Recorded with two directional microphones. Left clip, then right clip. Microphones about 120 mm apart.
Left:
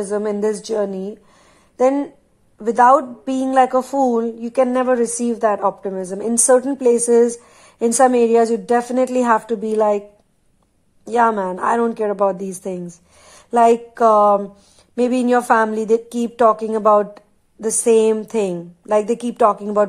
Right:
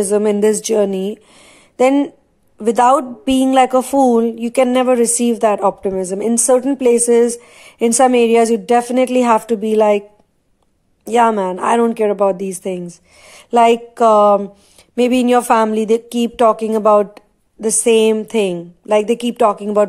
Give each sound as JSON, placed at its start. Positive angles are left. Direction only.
{"t": 0.0, "sound": "a woman's voice", "side_deg": -30}
{"t": 6.3, "sound": "speech", "side_deg": -10}
{"t": 11.1, "sound": "speech", "side_deg": -15}